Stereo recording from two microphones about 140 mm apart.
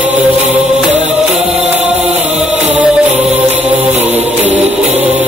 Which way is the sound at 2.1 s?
55° right (ahead or behind).